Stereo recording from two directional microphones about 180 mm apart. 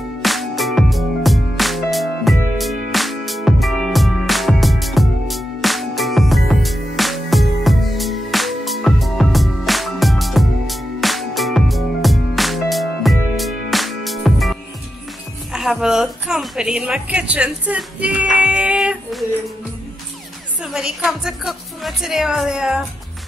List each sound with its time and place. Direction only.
0.2 s music: centre (ahead or behind)
15.5 s a woman's voice: centre (ahead or behind)
20.6 s a woman's voice: 5° right (ahead or behind)